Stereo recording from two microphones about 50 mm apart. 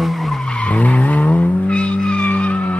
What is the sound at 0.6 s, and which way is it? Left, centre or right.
Skidding, left.